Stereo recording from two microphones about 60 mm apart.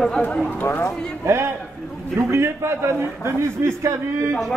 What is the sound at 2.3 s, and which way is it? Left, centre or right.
A man's voice, right.